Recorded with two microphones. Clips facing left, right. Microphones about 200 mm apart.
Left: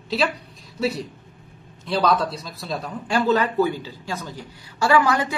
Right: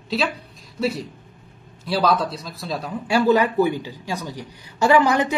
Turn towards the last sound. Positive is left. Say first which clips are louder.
# right 2 dB
turn(degrees=-20)  # may be behind; listen again after turning